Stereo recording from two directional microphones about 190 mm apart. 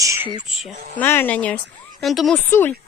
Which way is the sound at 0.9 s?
10° left (ahead or behind).